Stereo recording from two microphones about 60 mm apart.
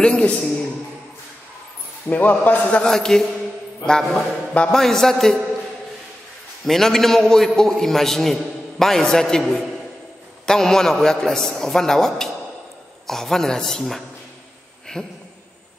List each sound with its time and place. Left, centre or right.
0.0 s a sound: centre
2.0 s a man's voice: left
2.8 s a man's voice: centre
6.6 s a man's voice: centre